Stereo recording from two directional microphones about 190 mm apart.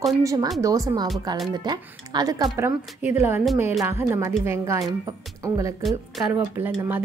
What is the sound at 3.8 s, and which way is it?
A woman's voice, 15° right (ahead or behind).